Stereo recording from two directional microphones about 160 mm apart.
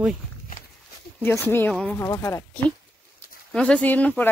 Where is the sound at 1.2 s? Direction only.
15° left (ahead or behind).